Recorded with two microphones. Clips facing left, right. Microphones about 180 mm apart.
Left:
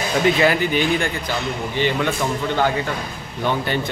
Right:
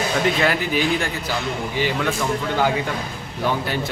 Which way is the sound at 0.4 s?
Centre (ahead or behind).